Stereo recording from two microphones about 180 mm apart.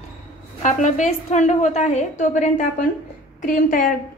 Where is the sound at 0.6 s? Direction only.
40° left (ahead or behind).